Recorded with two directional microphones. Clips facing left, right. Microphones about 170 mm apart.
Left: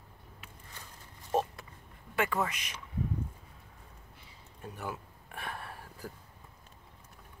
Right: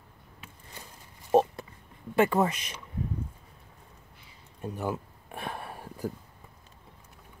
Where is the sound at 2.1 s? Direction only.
30° right (ahead or behind).